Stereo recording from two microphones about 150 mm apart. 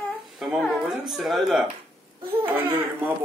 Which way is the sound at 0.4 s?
Centre (ahead or behind).